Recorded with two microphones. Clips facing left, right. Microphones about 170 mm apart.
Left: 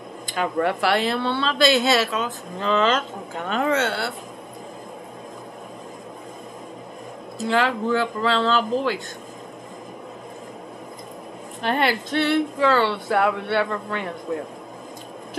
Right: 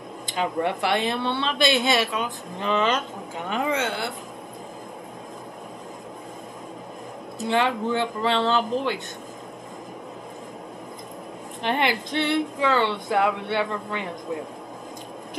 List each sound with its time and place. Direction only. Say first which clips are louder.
0.3 s a woman's voice: left 2 dB; 20° right (ahead or behind)
7.3 s speech: left 1 dB; 20° right (ahead or behind)
11.6 s a woman's voice: left 2 dB; 20° right (ahead or behind)